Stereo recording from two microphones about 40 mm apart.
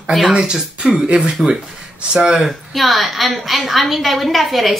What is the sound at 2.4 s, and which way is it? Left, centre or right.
A woman's voice, centre.